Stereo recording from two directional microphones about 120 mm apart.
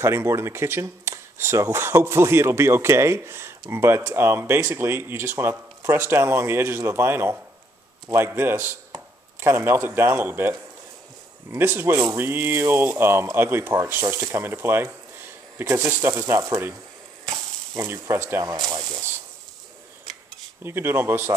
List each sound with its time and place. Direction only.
0.0 s speech: 20° right (ahead or behind)
11.5 s speech: 20° right (ahead or behind)
17.3 s a sound: 20° right (ahead or behind)
18.4 s speech: 30° right (ahead or behind)
20.6 s speech: 20° right (ahead or behind)